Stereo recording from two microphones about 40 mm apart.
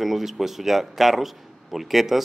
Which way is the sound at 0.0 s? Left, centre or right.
Centre.